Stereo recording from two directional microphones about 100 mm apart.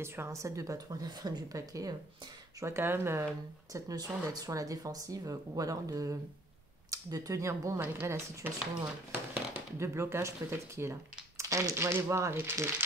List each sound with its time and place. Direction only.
0.0 s speech: 25° right (ahead or behind)
2.6 s speech: 25° right (ahead or behind)
4.3 s speech: 35° right (ahead or behind)